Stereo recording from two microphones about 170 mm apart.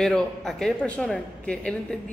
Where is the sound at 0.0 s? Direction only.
5° left (ahead or behind).